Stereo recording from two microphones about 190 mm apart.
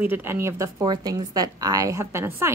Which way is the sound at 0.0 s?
10° right (ahead or behind).